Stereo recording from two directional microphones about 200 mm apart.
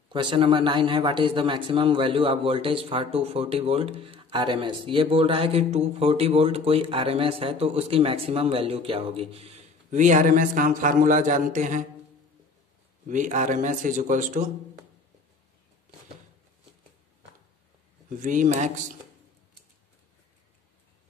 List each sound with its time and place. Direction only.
0.1 s a man's voice: 25° right (ahead or behind)
13.1 s speech: 40° right (ahead or behind)
18.2 s speech: 40° right (ahead or behind)